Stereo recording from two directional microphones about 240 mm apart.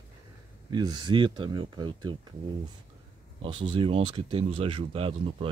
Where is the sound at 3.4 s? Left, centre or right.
Right.